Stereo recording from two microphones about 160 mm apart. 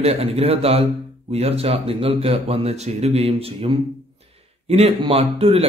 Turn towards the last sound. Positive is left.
turn(degrees=-40)  # may be behind; listen again after turning